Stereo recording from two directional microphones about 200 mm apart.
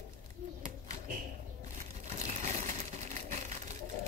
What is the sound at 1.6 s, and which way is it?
Crumpling, 35° right (ahead or behind).